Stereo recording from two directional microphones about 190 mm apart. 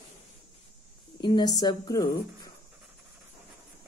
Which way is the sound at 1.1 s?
25° left (ahead or behind).